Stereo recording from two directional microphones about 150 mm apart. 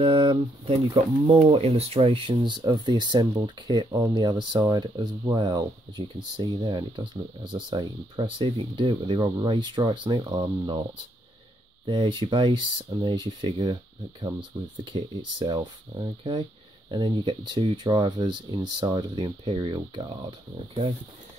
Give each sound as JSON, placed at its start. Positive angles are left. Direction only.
{"t": 0.0, "sound": "speech", "side_deg": -35}
{"t": 11.8, "sound": "speech", "side_deg": -30}